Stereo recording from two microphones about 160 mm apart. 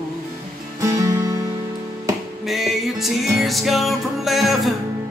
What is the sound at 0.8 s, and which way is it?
Music, 20° right (ahead or behind).